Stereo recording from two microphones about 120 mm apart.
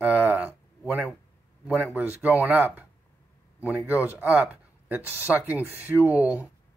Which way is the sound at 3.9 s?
10° right (ahead or behind).